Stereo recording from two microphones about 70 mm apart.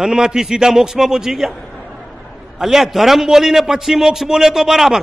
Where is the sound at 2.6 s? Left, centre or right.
Centre.